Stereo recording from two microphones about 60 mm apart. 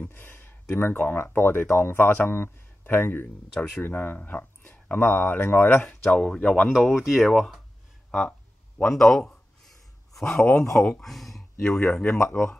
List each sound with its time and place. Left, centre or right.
0.1 s speech: left
2.3 s speech: left
5.9 s speech: centre
6.7 s speech: centre
8.1 s a sound: centre
10.6 s speech: centre